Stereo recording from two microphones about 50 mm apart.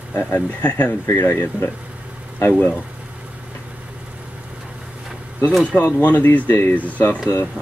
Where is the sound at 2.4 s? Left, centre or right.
Left.